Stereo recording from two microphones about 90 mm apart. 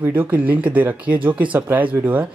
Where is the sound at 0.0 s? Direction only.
20° right (ahead or behind).